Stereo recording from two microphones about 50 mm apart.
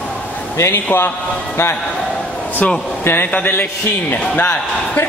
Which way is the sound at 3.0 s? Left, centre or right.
Left.